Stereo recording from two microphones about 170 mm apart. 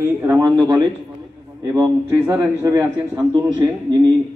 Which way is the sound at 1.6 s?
15° right (ahead or behind).